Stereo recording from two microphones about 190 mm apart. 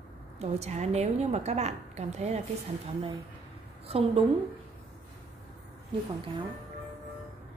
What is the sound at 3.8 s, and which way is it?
Speech, 30° right (ahead or behind).